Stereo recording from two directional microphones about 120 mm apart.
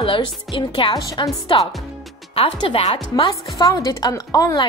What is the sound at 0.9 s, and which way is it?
Speech, 35° left (ahead or behind).